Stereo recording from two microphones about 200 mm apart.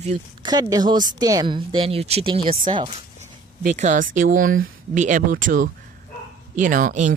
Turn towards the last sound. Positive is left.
turn(degrees=-40)  # may be behind; listen again after turning